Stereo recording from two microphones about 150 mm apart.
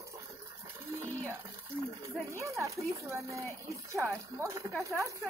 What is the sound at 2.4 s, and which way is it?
Speech, 20° right (ahead or behind).